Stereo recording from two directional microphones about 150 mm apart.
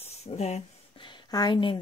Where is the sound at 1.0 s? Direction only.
30° left (ahead or behind).